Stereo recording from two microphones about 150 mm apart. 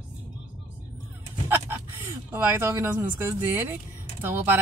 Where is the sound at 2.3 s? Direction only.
15° right (ahead or behind).